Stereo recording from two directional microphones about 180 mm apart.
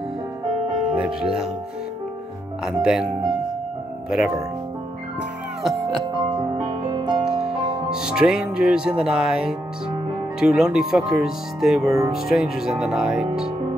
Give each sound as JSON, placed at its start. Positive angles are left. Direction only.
{"t": 0.9, "sound": "speech", "side_deg": -5}
{"t": 2.6, "sound": "speech", "side_deg": -5}
{"t": 5.9, "sound": "music", "side_deg": -25}
{"t": 7.9, "sound": "speech", "side_deg": -5}